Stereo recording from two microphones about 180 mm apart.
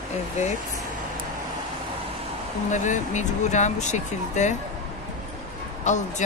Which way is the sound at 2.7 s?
40° left (ahead or behind).